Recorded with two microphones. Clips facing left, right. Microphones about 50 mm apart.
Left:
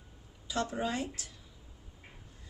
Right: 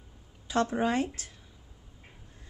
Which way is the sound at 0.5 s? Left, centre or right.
Right.